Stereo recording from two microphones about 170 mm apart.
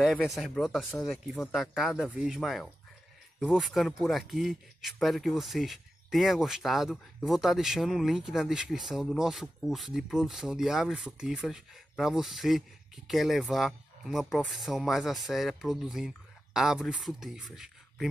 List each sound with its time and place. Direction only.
0.0 s speech: centre (ahead or behind)